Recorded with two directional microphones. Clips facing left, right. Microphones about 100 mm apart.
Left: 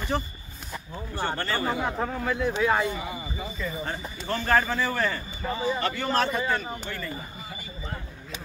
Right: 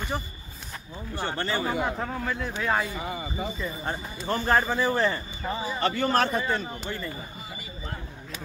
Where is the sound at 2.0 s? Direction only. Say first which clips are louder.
Left 4 dB; 5° left (ahead or behind).